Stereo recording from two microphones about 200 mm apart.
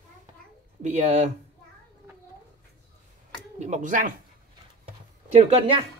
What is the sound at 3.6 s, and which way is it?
Speech, 35° right (ahead or behind).